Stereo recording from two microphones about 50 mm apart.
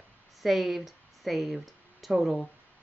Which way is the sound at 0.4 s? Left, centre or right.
Centre.